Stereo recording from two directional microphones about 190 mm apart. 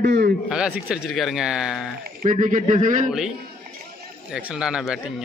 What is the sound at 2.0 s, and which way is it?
Speech, 45° right (ahead or behind).